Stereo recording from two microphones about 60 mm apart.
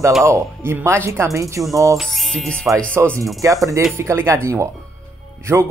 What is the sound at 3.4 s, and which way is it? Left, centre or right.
Speech, right.